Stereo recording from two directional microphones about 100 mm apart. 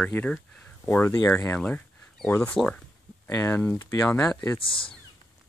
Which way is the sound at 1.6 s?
15° left (ahead or behind).